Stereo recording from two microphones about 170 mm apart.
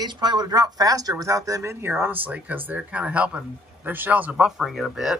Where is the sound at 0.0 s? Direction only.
25° right (ahead or behind).